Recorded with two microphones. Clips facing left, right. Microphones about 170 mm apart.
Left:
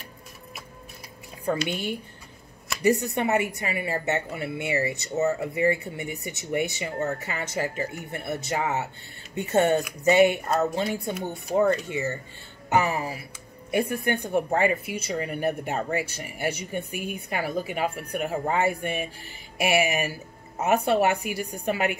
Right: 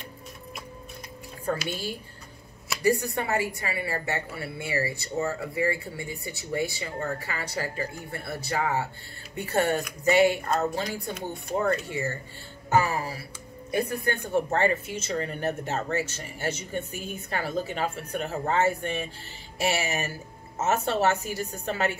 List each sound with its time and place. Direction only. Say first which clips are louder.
1.7 s speech: left 3 dB; 20° left (ahead or behind)